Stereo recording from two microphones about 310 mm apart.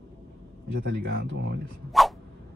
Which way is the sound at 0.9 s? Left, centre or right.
Right.